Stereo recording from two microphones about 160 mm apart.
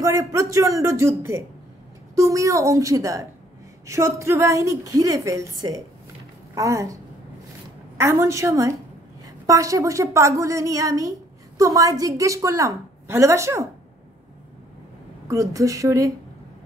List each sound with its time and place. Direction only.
0.0 s a woman's voice: 20° right (ahead or behind)
8.0 s a woman's voice: 20° right (ahead or behind)
15.2 s a woman's voice: 20° right (ahead or behind)